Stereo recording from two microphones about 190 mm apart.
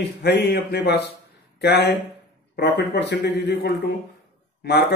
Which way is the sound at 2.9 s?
65° left (ahead or behind).